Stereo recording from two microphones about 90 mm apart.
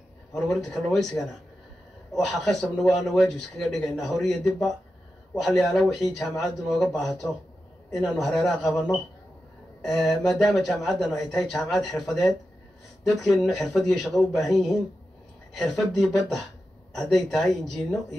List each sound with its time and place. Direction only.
0.3 s speech: centre (ahead or behind)
2.1 s speech: 5° left (ahead or behind)